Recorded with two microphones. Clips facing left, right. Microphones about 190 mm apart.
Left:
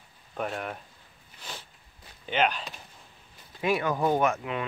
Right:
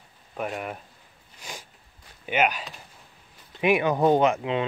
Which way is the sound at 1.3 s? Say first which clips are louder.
Right 2 dB; 10° right (ahead or behind).